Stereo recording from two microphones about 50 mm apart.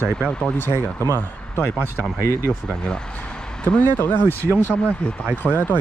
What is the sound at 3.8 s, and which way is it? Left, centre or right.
Speech, left.